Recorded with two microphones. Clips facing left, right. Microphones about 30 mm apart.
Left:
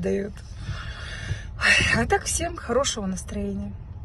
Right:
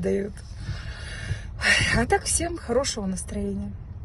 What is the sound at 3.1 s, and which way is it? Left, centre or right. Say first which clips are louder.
Speech: even; left.